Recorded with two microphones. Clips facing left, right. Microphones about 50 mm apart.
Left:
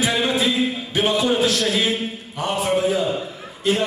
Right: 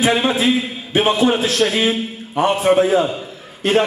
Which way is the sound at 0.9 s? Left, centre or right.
Right.